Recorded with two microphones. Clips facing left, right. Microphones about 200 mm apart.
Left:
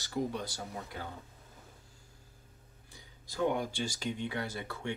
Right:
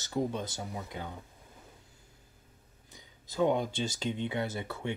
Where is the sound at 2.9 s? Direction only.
20° right (ahead or behind).